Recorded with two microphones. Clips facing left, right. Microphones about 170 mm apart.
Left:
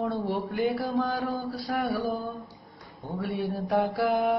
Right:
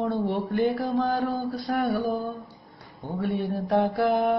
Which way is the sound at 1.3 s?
20° right (ahead or behind).